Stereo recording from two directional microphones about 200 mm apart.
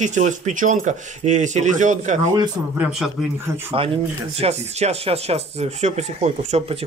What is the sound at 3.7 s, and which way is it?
Speech, 30° right (ahead or behind).